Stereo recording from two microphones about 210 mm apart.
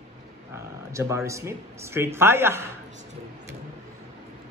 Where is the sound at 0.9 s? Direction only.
15° right (ahead or behind).